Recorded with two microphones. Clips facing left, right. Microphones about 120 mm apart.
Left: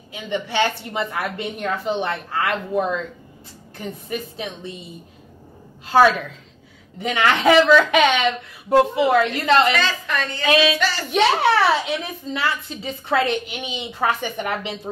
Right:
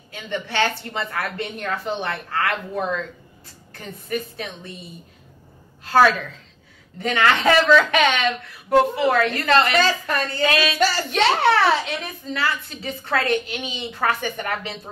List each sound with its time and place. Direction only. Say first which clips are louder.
0.1 s a woman's voice: left 2 dB; 15° left (ahead or behind)
5.9 s a woman's voice: left 1 dB; 15° left (ahead or behind)
9.8 s a woman's voice: right 3 dB; 40° right (ahead or behind)
10.5 s female singing: left 10 dB; 20° left (ahead or behind)
11.1 s a woman's voice: left 3 dB; 10° left (ahead or behind)